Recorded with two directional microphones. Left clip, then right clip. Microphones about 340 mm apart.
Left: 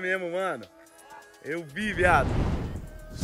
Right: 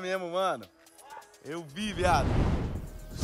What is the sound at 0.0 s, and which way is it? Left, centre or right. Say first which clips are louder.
Speech: left 2 dB; centre.